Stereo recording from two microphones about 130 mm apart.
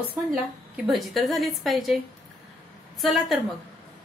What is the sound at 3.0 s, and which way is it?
Speech, centre (ahead or behind).